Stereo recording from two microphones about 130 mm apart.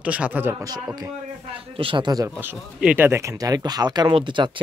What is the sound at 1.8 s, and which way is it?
Speech, 40° right (ahead or behind).